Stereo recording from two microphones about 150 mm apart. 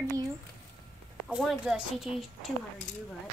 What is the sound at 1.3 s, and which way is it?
Speech, 5° right (ahead or behind).